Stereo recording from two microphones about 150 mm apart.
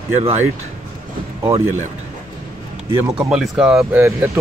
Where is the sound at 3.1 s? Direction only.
5° right (ahead or behind).